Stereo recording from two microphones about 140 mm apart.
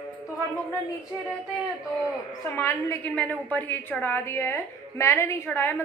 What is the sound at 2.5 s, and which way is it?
A woman's voice, 20° left (ahead or behind).